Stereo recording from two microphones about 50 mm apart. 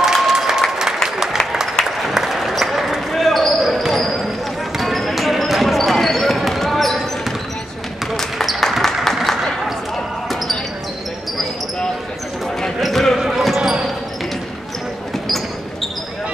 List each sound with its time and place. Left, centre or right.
0.0 s applause: centre
1.8 s basketball bounce: centre
12.8 s basketball bounce: centre
13.6 s basketball bounce: centre